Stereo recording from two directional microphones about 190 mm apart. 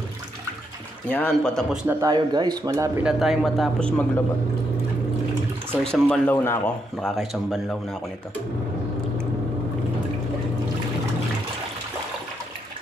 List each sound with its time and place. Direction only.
1.0 s speech: 10° left (ahead or behind)
2.0 s speech: 20° right (ahead or behind); by 3.9 s centre (ahead or behind)
5.7 s speech: 5° left (ahead or behind)